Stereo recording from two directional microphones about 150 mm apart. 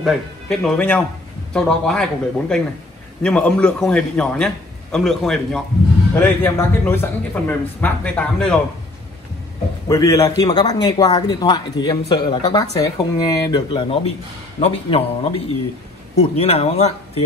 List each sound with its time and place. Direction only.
0.0 s a man's voice: 5° left (ahead or behind)
9.8 s a man's voice: 20° left (ahead or behind); by 17.2 s 45° left (ahead or behind)